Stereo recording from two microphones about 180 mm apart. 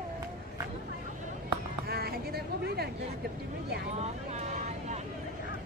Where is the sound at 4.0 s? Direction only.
40° right (ahead or behind).